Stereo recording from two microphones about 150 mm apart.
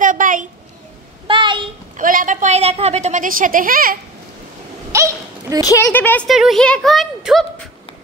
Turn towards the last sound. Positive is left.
turn(degrees=0)  # may be behind; listen again after turning